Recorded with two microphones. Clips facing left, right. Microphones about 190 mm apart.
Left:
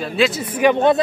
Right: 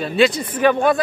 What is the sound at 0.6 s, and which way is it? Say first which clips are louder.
Speech: left 1 dB; 20° left (ahead or behind).